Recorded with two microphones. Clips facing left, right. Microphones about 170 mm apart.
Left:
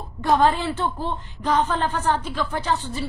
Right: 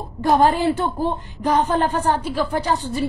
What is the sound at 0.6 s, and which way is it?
Speech, 10° right (ahead or behind).